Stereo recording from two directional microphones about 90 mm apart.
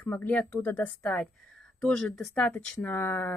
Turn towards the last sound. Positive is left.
turn(degrees=25)  # may be behind; listen again after turning